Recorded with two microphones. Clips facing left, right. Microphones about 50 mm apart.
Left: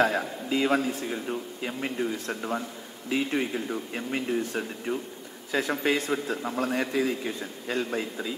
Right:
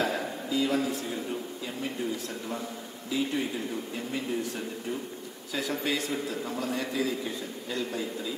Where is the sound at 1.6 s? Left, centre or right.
Left.